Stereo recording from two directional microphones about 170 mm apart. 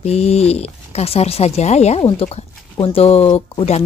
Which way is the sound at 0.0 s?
40° left (ahead or behind).